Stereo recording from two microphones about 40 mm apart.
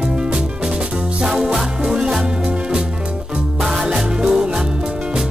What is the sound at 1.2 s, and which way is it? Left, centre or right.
Music, centre.